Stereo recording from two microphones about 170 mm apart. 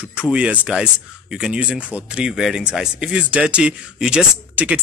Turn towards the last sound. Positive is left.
turn(degrees=-5)  # may be behind; listen again after turning